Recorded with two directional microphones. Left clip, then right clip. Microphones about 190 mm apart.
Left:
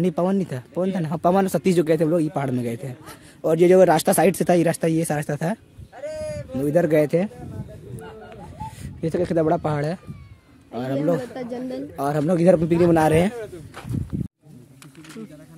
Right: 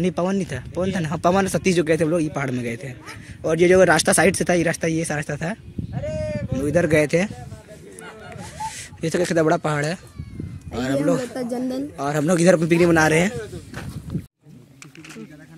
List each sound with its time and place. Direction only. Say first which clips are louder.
0.0 s speech: left 1 dB; 15° left (ahead or behind)
5.9 s a sound: right 2 dB; 40° left (ahead or behind)
6.3 s speech: left 1 dB; 15° left (ahead or behind)
9.0 s a man's voice: right 2 dB; 10° left (ahead or behind)
11.4 s speech: right 4 dB; 65° right (ahead or behind)
12.0 s speech: even; 10° left (ahead or behind)